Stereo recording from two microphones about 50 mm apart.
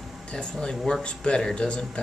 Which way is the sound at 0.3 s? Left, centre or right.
Centre.